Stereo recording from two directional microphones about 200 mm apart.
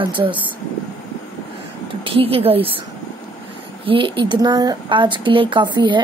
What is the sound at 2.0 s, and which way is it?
Speech, 25° right (ahead or behind).